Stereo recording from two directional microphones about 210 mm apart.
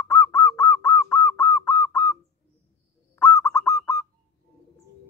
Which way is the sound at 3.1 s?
10° left (ahead or behind).